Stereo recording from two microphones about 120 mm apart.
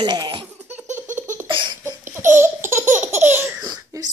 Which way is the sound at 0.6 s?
15° right (ahead or behind).